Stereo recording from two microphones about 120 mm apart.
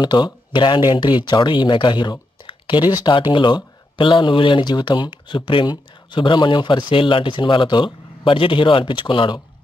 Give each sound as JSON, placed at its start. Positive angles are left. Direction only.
{"t": 0.0, "sound": "speech", "side_deg": 40}